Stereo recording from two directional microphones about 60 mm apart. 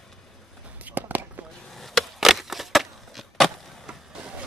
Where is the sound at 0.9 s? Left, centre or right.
Right.